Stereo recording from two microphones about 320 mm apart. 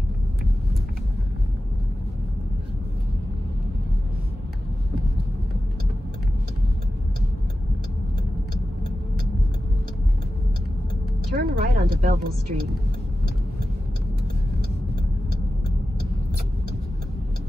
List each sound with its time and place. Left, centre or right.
11.3 s a woman's voice: right